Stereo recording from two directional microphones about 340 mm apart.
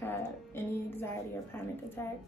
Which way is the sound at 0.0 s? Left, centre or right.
Centre.